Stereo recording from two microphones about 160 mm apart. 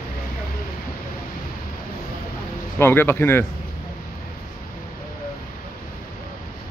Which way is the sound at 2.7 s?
15° left (ahead or behind).